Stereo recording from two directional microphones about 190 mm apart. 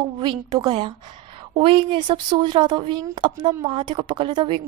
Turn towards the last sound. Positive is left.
turn(degrees=-25)  # may be behind; listen again after turning